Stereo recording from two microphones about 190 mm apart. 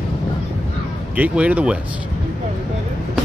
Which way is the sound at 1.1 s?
5° right (ahead or behind).